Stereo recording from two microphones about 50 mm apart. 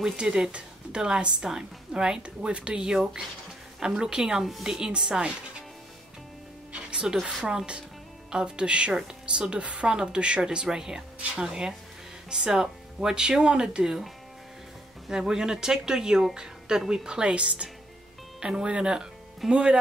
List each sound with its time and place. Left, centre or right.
0.0 s speech: centre
4.5 s a woman's voice: centre
4.7 s speech: centre
6.7 s music: right
7.4 s speech: centre
15.0 s speech: centre